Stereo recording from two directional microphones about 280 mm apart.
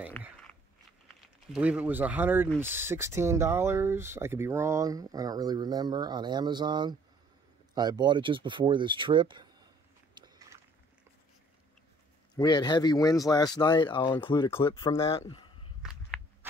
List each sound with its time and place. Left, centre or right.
0.2 s biting: centre
1.5 s speech: centre
10.1 s biting: centre
12.4 s speech: centre
15.8 s walk: centre